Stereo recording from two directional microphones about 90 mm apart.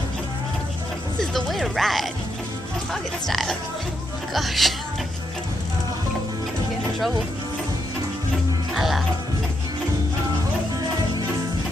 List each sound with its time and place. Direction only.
1.2 s speech: centre (ahead or behind)
8.7 s music: centre (ahead or behind)